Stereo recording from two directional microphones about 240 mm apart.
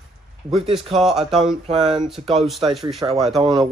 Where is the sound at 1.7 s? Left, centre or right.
Right.